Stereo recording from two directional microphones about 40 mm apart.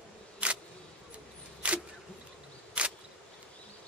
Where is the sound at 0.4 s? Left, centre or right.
Right.